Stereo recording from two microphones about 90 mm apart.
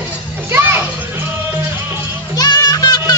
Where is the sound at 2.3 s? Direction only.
50° left (ahead or behind).